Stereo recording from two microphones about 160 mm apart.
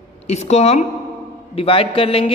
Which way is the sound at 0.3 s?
40° left (ahead or behind).